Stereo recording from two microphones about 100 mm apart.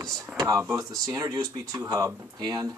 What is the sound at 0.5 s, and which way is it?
Speech, 30° right (ahead or behind).